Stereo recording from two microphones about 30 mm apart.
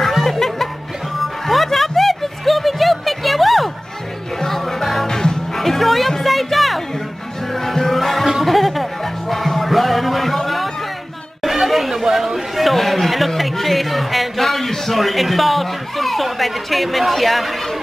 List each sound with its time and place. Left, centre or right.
0.2 s music: centre
5.0 s music: centre
5.6 s music: centre
11.4 s chatter: centre
12.6 s a sound: centre